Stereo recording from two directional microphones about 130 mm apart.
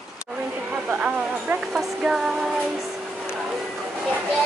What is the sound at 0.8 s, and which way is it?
Speech, 10° right (ahead or behind).